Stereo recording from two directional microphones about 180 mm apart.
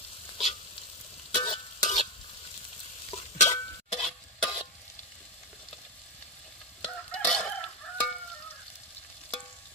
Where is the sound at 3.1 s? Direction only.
35° left (ahead or behind).